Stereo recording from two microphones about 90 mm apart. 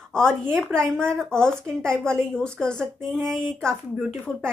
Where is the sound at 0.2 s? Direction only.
25° right (ahead or behind).